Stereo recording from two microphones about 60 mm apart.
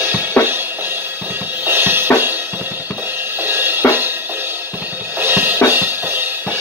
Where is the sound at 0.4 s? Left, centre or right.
Left.